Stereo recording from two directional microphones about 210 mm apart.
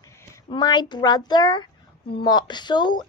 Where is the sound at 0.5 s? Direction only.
20° left (ahead or behind).